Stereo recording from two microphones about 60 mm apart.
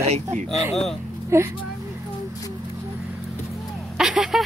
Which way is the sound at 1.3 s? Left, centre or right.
Right.